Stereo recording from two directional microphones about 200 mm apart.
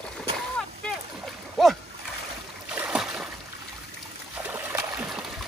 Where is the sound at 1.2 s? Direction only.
Centre (ahead or behind).